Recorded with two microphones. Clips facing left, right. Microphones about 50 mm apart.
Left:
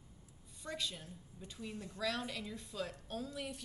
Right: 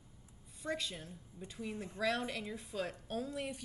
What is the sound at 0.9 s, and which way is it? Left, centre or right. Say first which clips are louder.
A woman's voice: right 3 dB; right.